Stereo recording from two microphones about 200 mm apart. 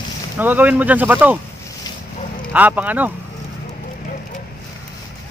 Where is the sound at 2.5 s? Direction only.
10° right (ahead or behind).